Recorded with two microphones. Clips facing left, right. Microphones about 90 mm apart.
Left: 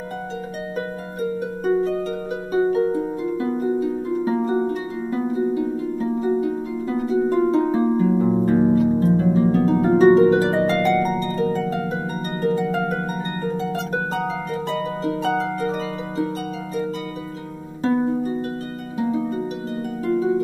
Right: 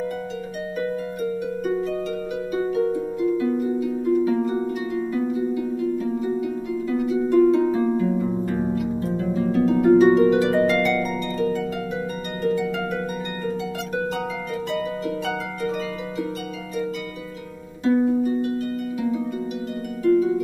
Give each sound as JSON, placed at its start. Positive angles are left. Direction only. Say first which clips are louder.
{"t": 1.6, "sound": "harp", "louder": "left 7 dB", "side_deg": 35}
{"t": 17.8, "sound": "harp", "louder": "right 1 dB", "side_deg": 35}